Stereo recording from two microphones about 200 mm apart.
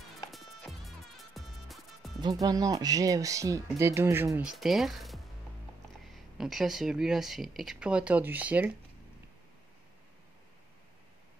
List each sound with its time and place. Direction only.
0.3 s music: centre (ahead or behind)
2.4 s speech: 15° right (ahead or behind)
4.3 s speech: centre (ahead or behind)